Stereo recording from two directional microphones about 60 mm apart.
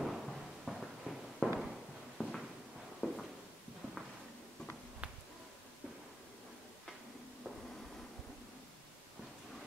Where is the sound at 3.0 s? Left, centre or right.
Left.